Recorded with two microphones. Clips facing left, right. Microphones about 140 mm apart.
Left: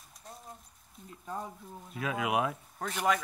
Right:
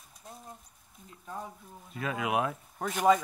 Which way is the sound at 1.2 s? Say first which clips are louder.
Left 2 dB; centre (ahead or behind).